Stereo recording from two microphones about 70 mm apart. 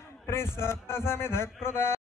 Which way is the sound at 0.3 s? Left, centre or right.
Left.